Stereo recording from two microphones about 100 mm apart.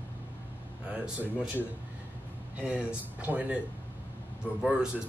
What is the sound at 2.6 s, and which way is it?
Speech, 10° right (ahead or behind).